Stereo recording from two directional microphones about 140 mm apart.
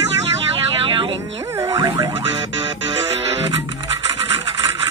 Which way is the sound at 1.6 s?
20° right (ahead or behind).